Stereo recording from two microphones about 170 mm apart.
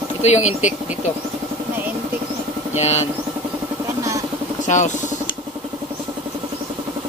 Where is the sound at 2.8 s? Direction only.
40° left (ahead or behind).